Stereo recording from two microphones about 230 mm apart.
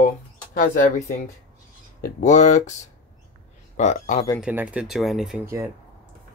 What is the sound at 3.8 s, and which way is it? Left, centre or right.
Speech, left.